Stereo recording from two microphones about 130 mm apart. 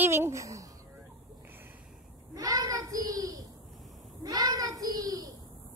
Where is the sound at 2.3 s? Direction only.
25° right (ahead or behind).